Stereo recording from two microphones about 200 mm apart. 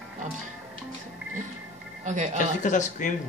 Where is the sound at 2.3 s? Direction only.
40° left (ahead or behind).